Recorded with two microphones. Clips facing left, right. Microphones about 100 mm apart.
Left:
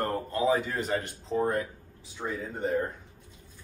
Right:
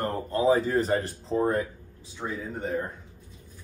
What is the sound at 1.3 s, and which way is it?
Speech, 25° right (ahead or behind).